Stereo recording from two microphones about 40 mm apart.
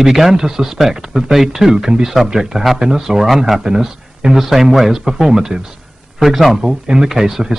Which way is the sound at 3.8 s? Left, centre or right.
Centre.